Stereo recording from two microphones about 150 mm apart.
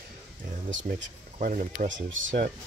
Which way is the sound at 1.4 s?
60° right (ahead or behind).